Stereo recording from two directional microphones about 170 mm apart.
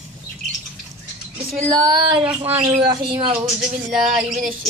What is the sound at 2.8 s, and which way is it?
Speech, 25° right (ahead or behind).